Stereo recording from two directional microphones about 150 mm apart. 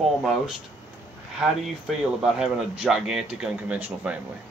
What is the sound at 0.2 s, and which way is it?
Speech, centre (ahead or behind).